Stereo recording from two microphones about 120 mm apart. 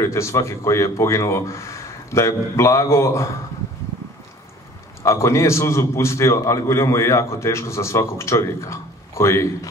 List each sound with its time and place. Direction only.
0.0 s a man's voice: 25° left (ahead or behind)
5.0 s a man's voice: 25° left (ahead or behind)